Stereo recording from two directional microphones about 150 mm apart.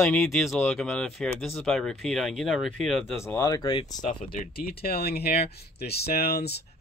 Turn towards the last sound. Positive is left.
turn(degrees=90)